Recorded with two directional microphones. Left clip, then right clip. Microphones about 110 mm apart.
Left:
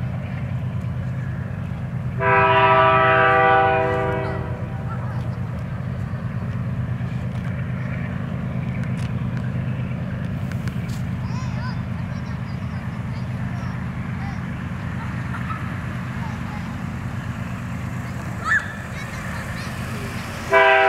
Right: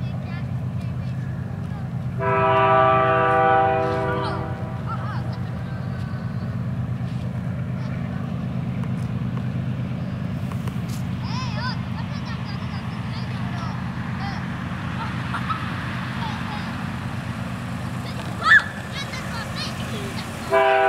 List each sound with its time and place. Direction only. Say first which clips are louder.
2.1 s train: left 3 dB; 5° left (ahead or behind)
20.4 s vehicle: left 3 dB; centre (ahead or behind)